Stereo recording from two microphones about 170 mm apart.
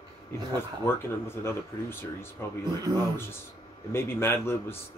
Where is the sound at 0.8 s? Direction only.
15° left (ahead or behind).